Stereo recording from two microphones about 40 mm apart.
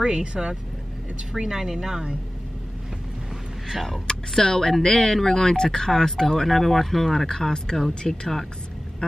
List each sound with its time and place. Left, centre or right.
0.0 s speech: right
3.7 s speech: centre
4.1 s speech: centre
7.2 s speech: centre